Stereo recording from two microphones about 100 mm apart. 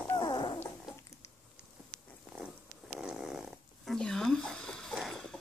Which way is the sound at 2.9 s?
5° right (ahead or behind).